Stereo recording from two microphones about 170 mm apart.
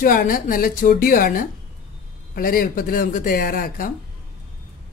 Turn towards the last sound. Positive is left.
turn(degrees=55)  # may be behind; listen again after turning